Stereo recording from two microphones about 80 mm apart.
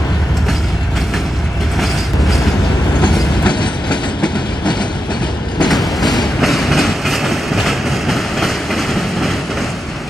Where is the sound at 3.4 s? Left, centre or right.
Left.